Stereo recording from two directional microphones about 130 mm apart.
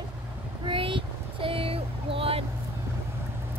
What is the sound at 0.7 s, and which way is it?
Child singing, 40° right (ahead or behind).